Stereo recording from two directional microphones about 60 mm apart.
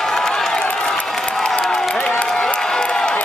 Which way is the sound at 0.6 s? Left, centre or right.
Left.